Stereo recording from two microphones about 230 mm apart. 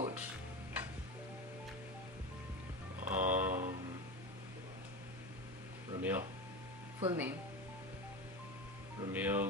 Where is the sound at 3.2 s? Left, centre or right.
Centre.